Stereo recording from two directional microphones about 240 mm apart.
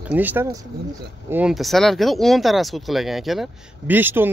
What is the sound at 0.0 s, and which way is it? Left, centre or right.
Speech, centre.